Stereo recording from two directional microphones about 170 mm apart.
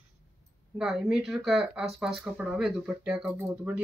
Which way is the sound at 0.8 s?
Centre (ahead or behind).